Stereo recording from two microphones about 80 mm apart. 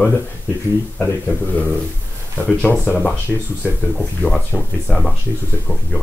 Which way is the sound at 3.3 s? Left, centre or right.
Centre.